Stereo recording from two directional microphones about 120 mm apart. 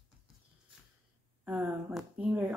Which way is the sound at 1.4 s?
15° right (ahead or behind).